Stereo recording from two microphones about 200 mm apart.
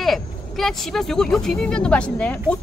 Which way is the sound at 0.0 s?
Centre (ahead or behind).